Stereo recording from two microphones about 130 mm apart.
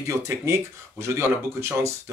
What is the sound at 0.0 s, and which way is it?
Speech, 25° right (ahead or behind).